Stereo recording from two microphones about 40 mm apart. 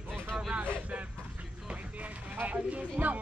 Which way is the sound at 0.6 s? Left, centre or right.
Right.